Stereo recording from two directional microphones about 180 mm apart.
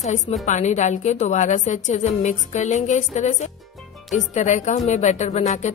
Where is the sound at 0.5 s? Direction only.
40° left (ahead or behind).